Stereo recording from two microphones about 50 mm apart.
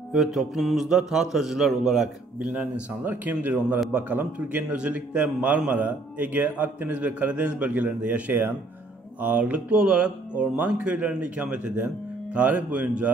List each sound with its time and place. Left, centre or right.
0.1 s mantra: centre
0.7 s speech: centre
2.3 s mantra: right
4.6 s mantra: right
5.7 s a man's voice: right
8.3 s speech: right
9.2 s mantra: right
12.4 s a man's voice: right